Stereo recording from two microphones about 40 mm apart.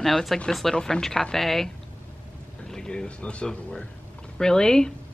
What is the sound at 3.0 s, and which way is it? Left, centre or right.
A woman's voice, left.